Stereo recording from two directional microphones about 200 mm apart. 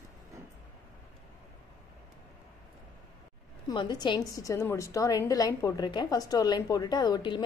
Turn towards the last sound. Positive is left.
turn(degrees=20)  # may be behind; listen again after turning